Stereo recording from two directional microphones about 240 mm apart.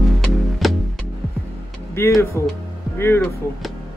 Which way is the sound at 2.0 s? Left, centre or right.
Centre.